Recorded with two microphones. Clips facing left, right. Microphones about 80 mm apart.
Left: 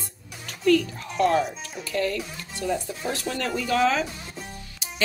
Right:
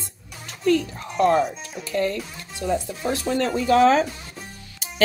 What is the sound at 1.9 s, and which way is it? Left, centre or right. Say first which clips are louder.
Stir: right 2 dB; right.